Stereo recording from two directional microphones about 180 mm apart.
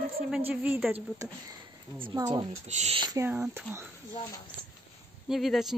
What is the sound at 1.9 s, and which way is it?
Speech, 25° right (ahead or behind).